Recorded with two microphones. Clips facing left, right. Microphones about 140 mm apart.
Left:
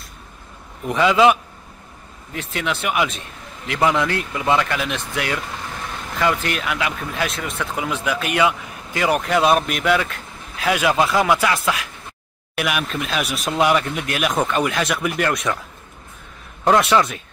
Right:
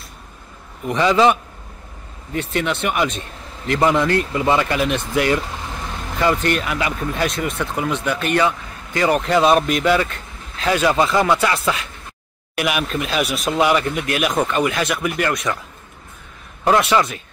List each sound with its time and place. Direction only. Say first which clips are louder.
0.8 s speech: even; 5° left (ahead or behind)
16.6 s speech: even; centre (ahead or behind)